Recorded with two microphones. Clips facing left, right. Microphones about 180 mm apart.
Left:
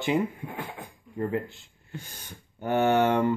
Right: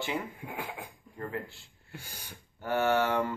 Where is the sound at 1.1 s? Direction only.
20° left (ahead or behind).